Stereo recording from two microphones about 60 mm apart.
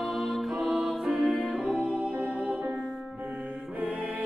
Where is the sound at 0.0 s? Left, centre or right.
Centre.